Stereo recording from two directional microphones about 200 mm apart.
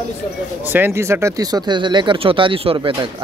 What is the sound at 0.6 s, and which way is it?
Speech, 10° right (ahead or behind).